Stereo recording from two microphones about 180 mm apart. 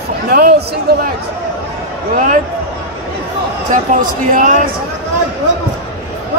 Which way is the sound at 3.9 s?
45° right (ahead or behind).